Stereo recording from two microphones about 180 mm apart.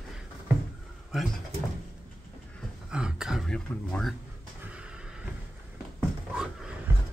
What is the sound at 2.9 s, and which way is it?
Throat clearing, 5° right (ahead or behind).